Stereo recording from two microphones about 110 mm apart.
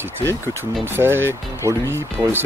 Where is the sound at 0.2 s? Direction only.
20° left (ahead or behind).